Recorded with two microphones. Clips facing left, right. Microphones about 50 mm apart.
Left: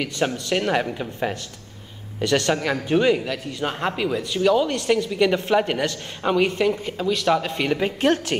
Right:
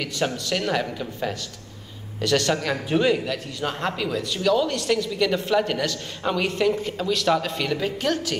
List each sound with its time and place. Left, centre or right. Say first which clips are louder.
0.5 s speech: left 4 dB; left
2.1 s a man's voice: left 1 dB; centre